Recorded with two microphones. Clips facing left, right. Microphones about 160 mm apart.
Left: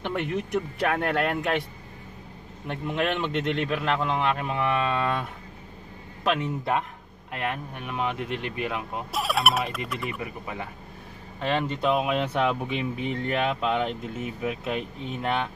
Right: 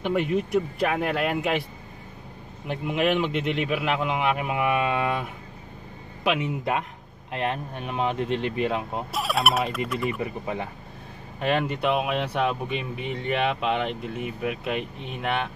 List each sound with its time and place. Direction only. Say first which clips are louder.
0.0 s speech: right 4 dB; 5° right (ahead or behind)
2.7 s speech: right 3 dB; 5° right (ahead or behind)
7.3 s speech: right 3 dB; 25° right (ahead or behind)
9.1 s speech: even; centre (ahead or behind)
10.2 s speech: right 5 dB; 25° right (ahead or behind)
11.3 s speech: right 2 dB; 15° right (ahead or behind)